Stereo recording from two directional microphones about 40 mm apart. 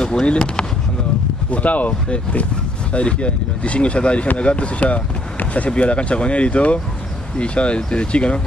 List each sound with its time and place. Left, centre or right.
0.0 s speech: left
1.5 s speech: left
2.0 s speech: left